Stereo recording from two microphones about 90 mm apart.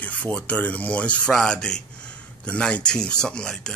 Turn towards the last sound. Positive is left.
turn(degrees=10)  # may be behind; listen again after turning